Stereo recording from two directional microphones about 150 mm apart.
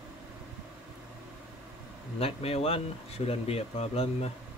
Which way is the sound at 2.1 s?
40° left (ahead or behind).